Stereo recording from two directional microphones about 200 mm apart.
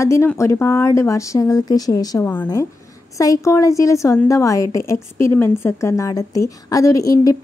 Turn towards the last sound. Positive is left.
turn(degrees=15)  # may be behind; listen again after turning